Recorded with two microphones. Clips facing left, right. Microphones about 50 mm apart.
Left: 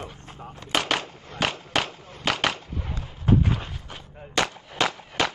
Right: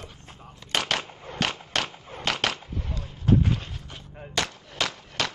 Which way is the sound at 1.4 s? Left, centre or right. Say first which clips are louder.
Left 2 dB; centre.